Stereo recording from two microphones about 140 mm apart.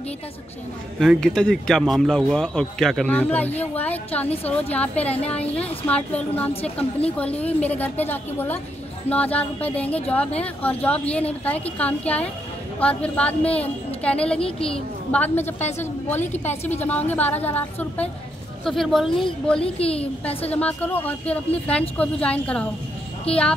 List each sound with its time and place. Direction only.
0.9 s a man's voice: 5° left (ahead or behind)
18.6 s a man's voice: centre (ahead or behind)
19.6 s a woman's voice: 45° left (ahead or behind)
20.2 s a woman's voice: 10° left (ahead or behind)
23.3 s a woman's voice: 45° left (ahead or behind)